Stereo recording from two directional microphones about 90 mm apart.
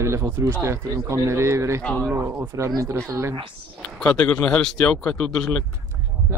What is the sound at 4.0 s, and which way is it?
Speech, 10° left (ahead or behind).